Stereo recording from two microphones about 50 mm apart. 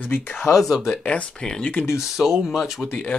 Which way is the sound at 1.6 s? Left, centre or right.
Left.